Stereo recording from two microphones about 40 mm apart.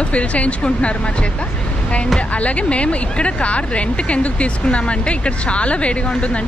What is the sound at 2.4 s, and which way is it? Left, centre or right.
Speech, left.